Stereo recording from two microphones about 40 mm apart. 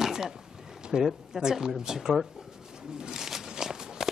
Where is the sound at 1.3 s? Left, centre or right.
Centre.